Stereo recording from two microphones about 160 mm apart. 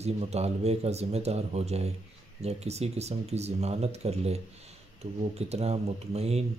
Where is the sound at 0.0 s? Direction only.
40° right (ahead or behind).